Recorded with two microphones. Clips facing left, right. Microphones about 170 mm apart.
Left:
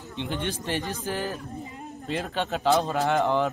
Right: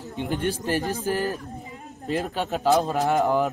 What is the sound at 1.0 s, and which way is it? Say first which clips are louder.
A man's voice: right 4 dB; 5° right (ahead or behind).